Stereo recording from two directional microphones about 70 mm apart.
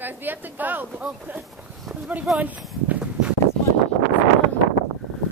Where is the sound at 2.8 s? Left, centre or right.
Centre.